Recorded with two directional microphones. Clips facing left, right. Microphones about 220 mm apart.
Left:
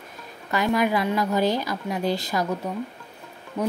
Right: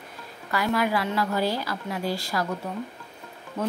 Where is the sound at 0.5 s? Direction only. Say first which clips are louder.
Left 3 dB; 20° left (ahead or behind).